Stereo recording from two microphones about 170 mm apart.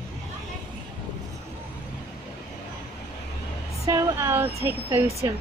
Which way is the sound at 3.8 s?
15° right (ahead or behind).